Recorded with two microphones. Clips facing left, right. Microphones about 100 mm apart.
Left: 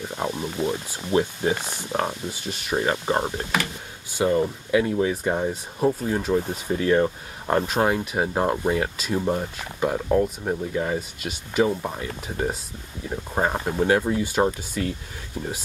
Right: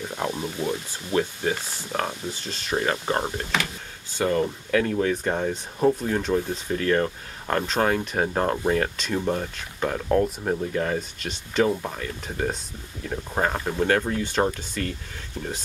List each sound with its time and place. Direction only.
0.1 s speech: 5° left (ahead or behind)
0.7 s speech: 20° left (ahead or behind)
10.0 s speech: centre (ahead or behind)